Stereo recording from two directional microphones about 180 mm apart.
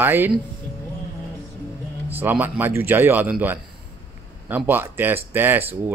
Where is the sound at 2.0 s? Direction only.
10° right (ahead or behind).